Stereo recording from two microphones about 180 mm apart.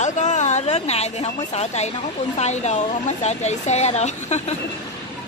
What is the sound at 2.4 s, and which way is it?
A woman's voice, 40° left (ahead or behind).